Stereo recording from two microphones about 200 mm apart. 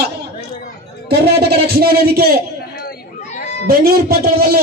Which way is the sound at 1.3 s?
55° right (ahead or behind).